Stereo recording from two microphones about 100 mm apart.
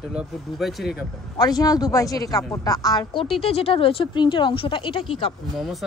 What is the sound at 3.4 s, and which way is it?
Speech, 70° left (ahead or behind).